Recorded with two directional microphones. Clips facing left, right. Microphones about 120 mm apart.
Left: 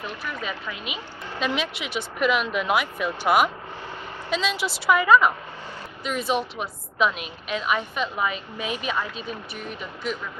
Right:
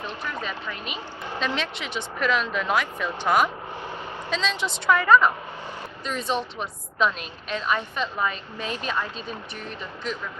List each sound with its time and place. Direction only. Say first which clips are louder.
0.4 s a woman's voice: even; 10° left (ahead or behind)